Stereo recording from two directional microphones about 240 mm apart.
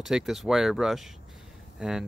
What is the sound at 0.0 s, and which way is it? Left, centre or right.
Speech, centre.